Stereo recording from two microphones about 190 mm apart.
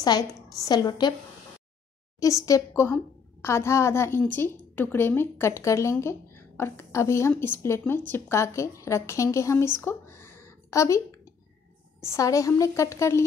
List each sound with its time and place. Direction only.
0.0 s a woman's voice: 20° left (ahead or behind)
2.1 s a woman's voice: 15° left (ahead or behind)
12.0 s a woman's voice: 15° left (ahead or behind)